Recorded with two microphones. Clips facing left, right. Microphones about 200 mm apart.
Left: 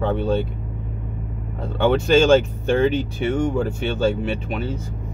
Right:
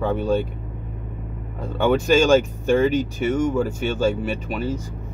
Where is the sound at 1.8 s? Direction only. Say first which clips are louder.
Left 1 dB; 10° right (ahead or behind).